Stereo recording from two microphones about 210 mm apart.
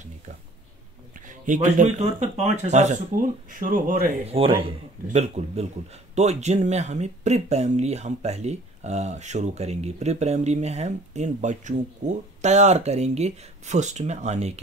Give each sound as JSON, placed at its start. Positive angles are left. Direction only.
{"t": 1.2, "sound": "speech", "side_deg": -40}
{"t": 4.3, "sound": "a man's voice", "side_deg": -25}